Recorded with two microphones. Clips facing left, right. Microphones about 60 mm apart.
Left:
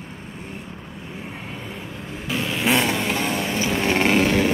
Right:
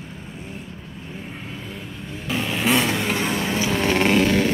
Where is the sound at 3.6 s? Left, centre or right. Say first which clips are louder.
Even; centre.